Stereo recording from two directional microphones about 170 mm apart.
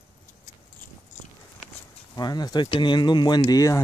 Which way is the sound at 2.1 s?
25° left (ahead or behind).